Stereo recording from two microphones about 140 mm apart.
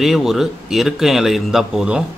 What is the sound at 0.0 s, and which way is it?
Speech, 5° right (ahead or behind).